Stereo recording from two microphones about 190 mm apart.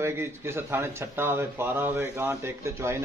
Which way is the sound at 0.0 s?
15° right (ahead or behind).